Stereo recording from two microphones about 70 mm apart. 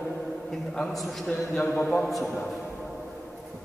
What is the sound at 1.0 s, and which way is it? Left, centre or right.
A man's voice, centre.